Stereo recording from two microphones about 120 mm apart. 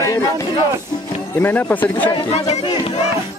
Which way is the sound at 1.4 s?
15° left (ahead or behind).